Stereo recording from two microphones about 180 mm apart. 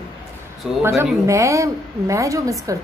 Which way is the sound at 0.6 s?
Centre (ahead or behind).